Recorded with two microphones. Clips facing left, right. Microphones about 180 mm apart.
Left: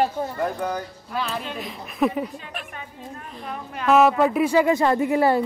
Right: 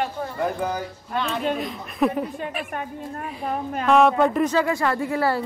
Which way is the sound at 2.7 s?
50° right (ahead or behind).